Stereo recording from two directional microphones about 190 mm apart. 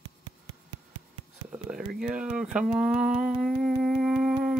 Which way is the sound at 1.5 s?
5° right (ahead or behind).